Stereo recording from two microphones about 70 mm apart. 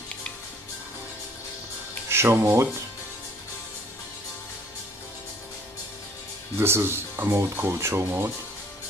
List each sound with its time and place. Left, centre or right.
2.0 s speech: right
6.6 s speech: right